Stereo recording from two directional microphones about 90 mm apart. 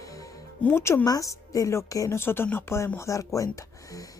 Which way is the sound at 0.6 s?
25° left (ahead or behind).